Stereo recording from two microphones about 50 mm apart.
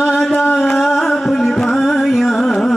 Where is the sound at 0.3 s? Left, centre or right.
Left.